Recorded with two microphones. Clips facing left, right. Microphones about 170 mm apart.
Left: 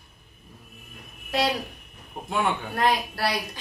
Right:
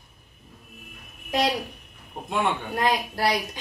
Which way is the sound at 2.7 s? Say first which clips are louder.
Even; 20° right (ahead or behind).